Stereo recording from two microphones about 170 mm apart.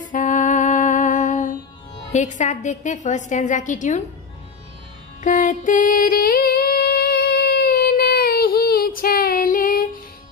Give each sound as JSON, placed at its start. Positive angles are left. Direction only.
{"t": 0.1, "sound": "music", "side_deg": 50}
{"t": 2.1, "sound": "a woman's voice", "side_deg": 45}
{"t": 5.2, "sound": "music", "side_deg": 50}